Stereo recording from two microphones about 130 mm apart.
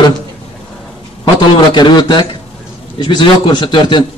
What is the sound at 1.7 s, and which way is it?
A man's voice, 35° left (ahead or behind).